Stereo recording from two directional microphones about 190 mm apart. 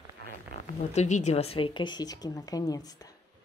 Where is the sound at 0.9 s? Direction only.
35° left (ahead or behind); by 3.2 s 20° left (ahead or behind).